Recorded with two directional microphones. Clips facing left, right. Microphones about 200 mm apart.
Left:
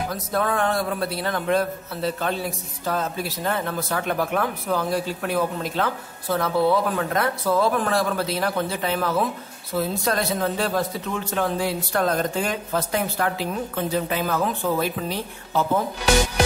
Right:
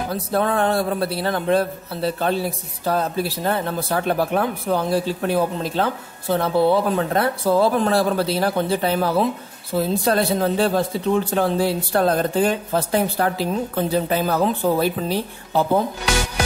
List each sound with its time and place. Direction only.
0.1 s a woman's voice: 30° right (ahead or behind)